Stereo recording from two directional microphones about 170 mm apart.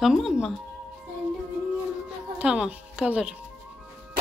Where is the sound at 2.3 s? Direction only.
5° right (ahead or behind).